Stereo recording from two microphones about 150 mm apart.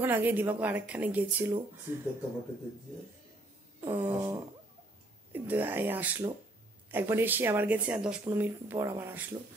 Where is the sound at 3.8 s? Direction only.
15° right (ahead or behind).